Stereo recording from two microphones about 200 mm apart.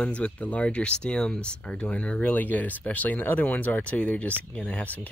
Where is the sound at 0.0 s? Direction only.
5° left (ahead or behind).